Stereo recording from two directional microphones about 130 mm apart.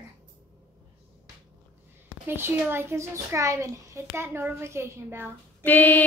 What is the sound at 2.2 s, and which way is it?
A child's voice, 15° right (ahead or behind).